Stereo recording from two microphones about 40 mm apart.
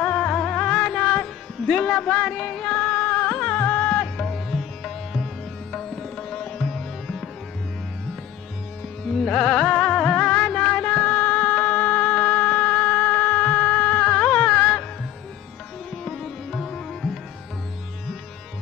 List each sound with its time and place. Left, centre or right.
0.4 s music: left
1.8 s speech: left
2.3 s music: centre
2.7 s music: left
4.2 s sitar: centre
9.1 s music: centre
9.4 s music: left
16.0 s music: centre